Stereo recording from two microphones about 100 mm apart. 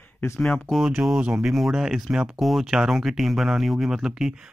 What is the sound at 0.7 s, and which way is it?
Speech, 5° right (ahead or behind).